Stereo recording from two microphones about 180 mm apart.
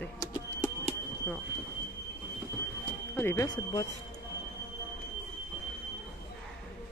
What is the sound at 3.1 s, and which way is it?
Speech, 15° left (ahead or behind).